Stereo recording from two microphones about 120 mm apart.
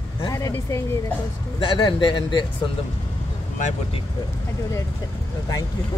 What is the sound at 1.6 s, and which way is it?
Speech, 40° left (ahead or behind).